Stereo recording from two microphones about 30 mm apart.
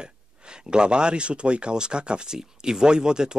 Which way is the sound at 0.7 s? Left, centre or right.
Right.